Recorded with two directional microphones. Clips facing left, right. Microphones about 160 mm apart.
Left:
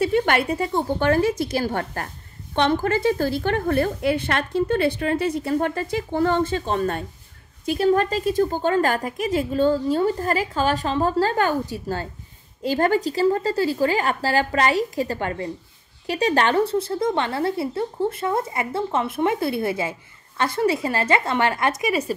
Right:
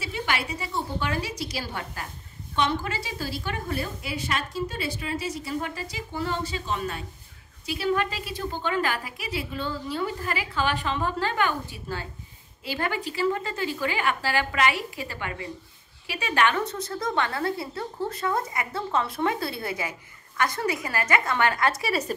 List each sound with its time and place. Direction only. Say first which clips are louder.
0.0 s a woman's voice: left 10 dB; 55° left (ahead or behind); by 22.1 s 15° left (ahead or behind)